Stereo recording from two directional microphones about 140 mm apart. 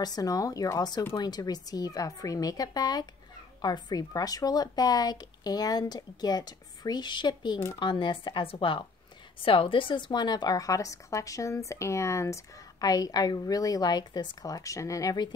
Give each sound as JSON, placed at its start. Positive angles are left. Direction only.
{"t": 0.0, "sound": "speech", "side_deg": 25}